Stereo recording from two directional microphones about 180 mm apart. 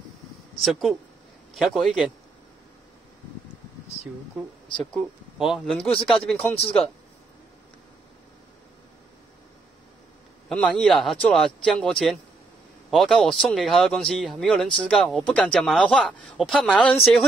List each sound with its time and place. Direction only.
0.6 s speech: centre (ahead or behind)
4.7 s speech: centre (ahead or behind)
6.3 s speech: 35° left (ahead or behind)
10.5 s speech: 5° left (ahead or behind)